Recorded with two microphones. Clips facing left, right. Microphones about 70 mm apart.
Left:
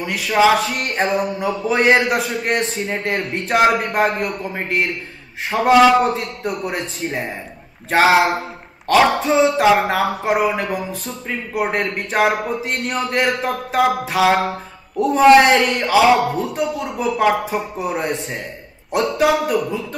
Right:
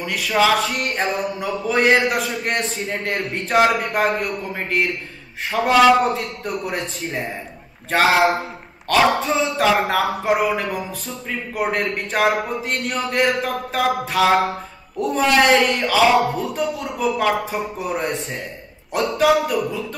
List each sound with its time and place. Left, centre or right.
0.0 s a man's voice: centre
4.5 s a man's voice: centre
15.3 s a man's voice: centre